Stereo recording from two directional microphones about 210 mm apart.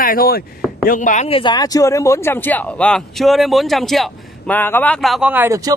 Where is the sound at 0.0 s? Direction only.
45° left (ahead or behind).